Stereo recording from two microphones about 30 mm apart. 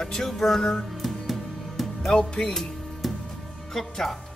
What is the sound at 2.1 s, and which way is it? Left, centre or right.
Speech, left.